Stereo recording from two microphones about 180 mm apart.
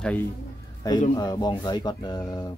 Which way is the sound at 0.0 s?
10° left (ahead or behind).